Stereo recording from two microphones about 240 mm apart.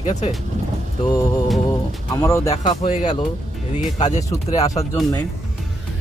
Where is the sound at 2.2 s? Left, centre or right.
Centre.